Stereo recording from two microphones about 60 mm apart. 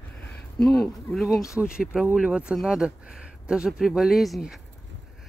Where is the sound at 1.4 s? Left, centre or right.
Left.